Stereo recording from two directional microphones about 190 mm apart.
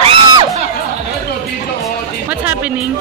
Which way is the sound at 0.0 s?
25° right (ahead or behind).